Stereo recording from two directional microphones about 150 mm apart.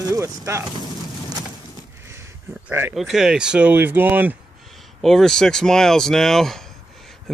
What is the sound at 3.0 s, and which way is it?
Speech, 5° right (ahead or behind).